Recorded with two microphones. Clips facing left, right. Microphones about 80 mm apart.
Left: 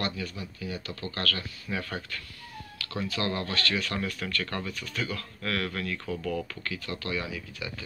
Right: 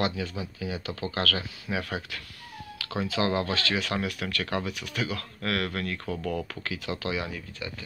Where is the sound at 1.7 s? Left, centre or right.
Right.